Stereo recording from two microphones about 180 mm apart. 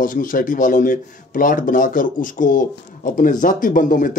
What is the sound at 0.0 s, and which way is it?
A man's voice, 50° left (ahead or behind).